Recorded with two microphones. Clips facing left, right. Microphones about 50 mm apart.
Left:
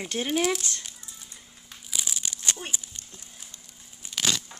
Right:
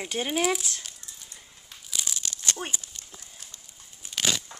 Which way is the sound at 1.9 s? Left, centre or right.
Centre.